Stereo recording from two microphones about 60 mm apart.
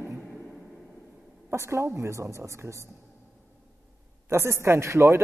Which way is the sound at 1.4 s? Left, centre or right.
Right.